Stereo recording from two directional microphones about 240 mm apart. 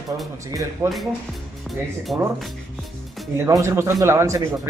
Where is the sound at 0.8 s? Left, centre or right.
Centre.